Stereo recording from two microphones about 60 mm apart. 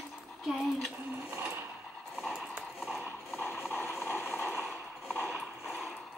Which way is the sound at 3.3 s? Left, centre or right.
Left.